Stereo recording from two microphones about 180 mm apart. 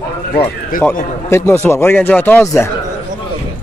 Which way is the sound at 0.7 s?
50° left (ahead or behind).